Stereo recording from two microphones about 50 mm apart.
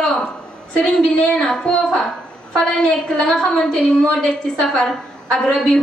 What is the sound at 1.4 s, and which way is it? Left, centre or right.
A woman's voice, centre.